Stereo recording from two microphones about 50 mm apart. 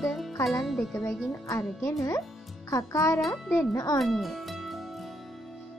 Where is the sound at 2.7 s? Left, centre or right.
Left.